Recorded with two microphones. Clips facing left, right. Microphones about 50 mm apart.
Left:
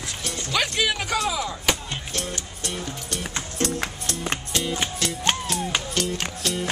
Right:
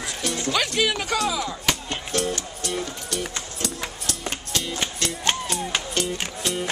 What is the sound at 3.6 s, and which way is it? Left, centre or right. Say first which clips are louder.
Music: left 7 dB; left.